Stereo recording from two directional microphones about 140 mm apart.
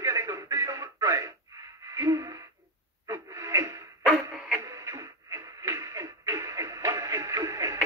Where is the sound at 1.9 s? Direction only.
20° right (ahead or behind).